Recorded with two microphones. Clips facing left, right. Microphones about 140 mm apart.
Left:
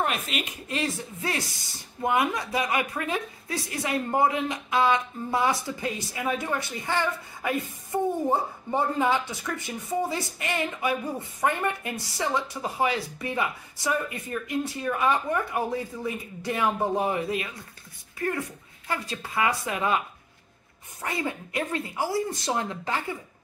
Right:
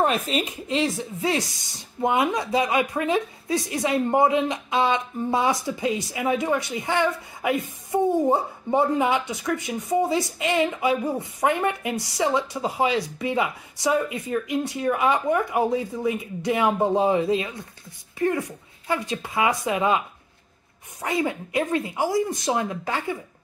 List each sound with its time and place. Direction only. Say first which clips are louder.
0.0 s speech: right 6 dB; 35° right (ahead or behind); by 20.0 s 20° right (ahead or behind)
21.0 s speech: right 5 dB; 20° right (ahead or behind)